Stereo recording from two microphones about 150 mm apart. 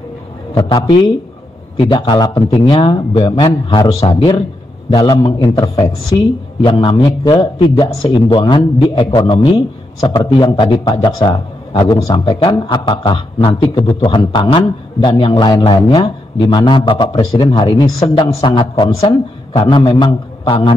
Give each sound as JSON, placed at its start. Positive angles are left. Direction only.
{"t": 0.6, "sound": "a woman's voice", "side_deg": 30}
{"t": 18.0, "sound": "a woman's voice", "side_deg": 40}